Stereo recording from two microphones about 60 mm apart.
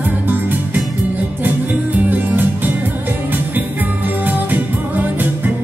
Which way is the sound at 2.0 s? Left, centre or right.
Right.